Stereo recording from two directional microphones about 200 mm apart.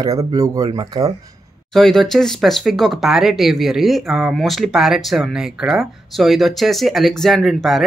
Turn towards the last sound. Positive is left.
turn(degrees=0)  # may be behind; listen again after turning